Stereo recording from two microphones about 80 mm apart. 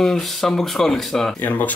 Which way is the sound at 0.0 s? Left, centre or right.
Centre.